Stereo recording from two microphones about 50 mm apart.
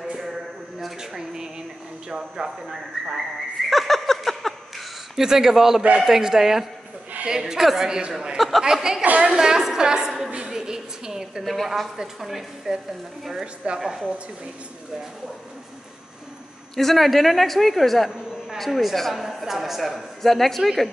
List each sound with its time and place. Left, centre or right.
0.0 s a sound: centre
2.1 s a woman's voice: centre
3.7 s a sound: centre
5.1 s a woman's voice: centre
8.4 s a woman's voice: centre
9.0 s a woman's voice: right
9.3 s a woman's voice: centre
10.3 s a sound: centre
11.4 s a woman's voice: centre
16.7 s speech: centre
18.1 s a sound: centre
18.7 s speech: centre